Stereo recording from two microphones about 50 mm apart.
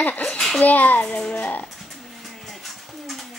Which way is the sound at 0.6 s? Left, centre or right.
Left.